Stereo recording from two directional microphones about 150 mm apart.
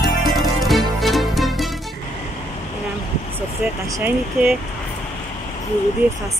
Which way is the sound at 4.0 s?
10° right (ahead or behind).